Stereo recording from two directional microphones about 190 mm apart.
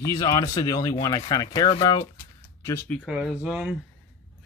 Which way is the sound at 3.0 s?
5° right (ahead or behind).